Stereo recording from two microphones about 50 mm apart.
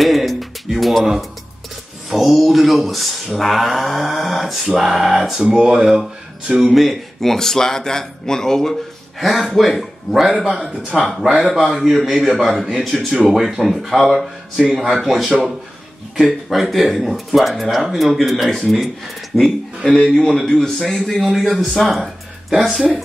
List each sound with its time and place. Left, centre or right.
0.0 s music: centre
2.0 s speech: centre
6.7 s a man's voice: centre
10.6 s speech: centre
12.5 s speech: centre